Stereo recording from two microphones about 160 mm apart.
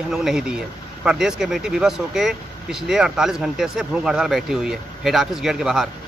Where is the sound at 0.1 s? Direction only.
5° right (ahead or behind).